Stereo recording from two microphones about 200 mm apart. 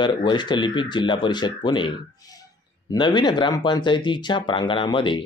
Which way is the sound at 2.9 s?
20° left (ahead or behind).